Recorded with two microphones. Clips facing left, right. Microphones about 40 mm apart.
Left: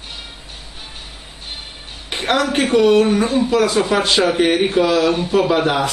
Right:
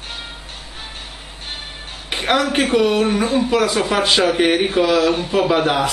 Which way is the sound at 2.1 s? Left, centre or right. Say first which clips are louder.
Even; centre.